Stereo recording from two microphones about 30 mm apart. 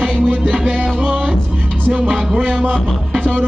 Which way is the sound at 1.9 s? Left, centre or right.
Right.